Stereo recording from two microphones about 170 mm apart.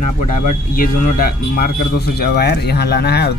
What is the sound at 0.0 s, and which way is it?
Speech, 50° left (ahead or behind).